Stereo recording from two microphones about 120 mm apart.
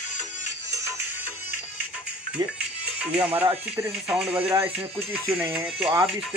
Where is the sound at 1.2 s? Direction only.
20° right (ahead or behind).